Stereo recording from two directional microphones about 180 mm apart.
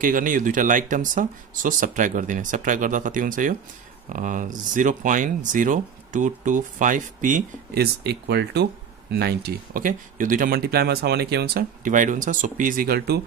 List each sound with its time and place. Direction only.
0.0 s speech: 50° right (ahead or behind)